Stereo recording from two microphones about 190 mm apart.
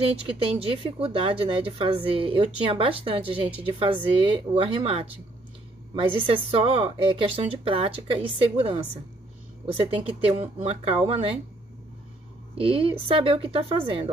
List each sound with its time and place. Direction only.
0.0 s speech: 30° right (ahead or behind)
12.5 s speech: 30° right (ahead or behind)